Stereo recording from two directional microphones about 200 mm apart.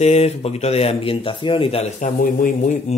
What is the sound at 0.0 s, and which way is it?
Speech, 30° left (ahead or behind).